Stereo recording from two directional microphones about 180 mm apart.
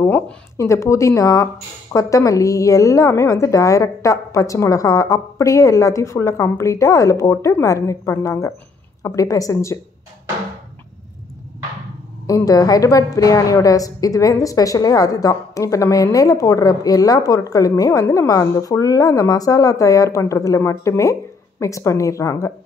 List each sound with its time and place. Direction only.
0.0 s speech: 15° left (ahead or behind)
12.3 s a woman's voice: 20° left (ahead or behind)